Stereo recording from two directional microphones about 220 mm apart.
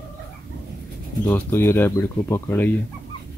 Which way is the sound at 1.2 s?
10° left (ahead or behind).